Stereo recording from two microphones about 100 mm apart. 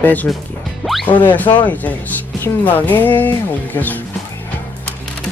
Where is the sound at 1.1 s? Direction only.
15° left (ahead or behind).